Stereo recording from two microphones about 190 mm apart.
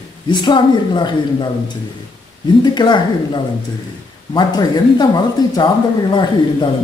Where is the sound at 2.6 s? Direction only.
25° left (ahead or behind).